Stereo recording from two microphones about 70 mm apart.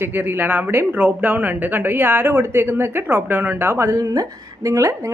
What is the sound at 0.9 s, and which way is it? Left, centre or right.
Speech, centre.